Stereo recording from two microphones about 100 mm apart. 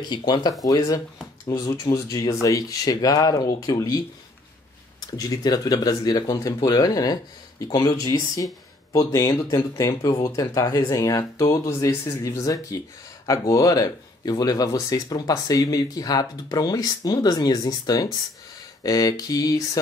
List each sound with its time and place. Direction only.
0.0 s speech: 50° left (ahead or behind)
0.7 s speech: 40° left (ahead or behind)
5.1 s speech: 40° left (ahead or behind)